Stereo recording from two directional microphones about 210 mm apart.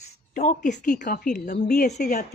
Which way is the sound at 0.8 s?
40° left (ahead or behind).